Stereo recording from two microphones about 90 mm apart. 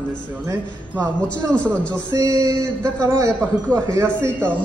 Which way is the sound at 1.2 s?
15° left (ahead or behind).